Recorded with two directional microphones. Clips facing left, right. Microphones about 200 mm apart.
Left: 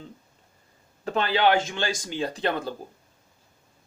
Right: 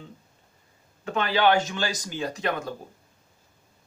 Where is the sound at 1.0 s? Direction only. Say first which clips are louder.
Even; 35° left (ahead or behind).